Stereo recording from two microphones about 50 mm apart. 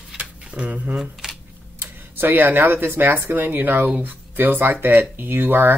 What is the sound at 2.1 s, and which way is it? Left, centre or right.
Speech, right.